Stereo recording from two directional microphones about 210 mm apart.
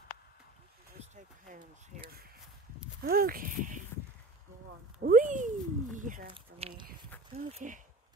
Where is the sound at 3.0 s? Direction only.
45° right (ahead or behind).